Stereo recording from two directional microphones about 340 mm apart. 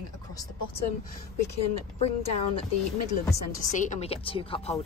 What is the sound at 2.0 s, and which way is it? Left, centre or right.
Speech, centre.